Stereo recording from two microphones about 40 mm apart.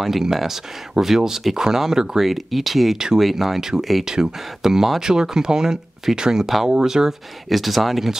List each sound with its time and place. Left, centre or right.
0.0 s speech: centre
7.4 s speech: centre